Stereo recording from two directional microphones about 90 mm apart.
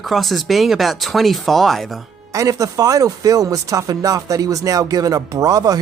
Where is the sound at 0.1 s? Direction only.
Centre (ahead or behind).